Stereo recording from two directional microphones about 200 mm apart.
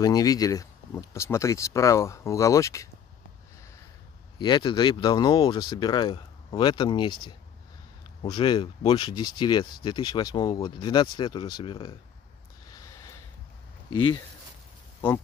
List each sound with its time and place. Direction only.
0.0 s speech: 20° left (ahead or behind)
4.4 s speech: 25° left (ahead or behind)
8.2 s speech: 25° left (ahead or behind)
12.6 s a sound: 15° left (ahead or behind)
13.9 s speech: 25° left (ahead or behind)